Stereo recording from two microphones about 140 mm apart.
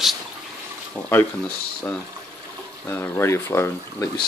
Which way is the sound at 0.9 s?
15° left (ahead or behind).